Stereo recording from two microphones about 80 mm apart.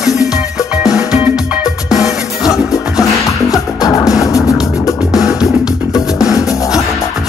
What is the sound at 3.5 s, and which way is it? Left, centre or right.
Music, left.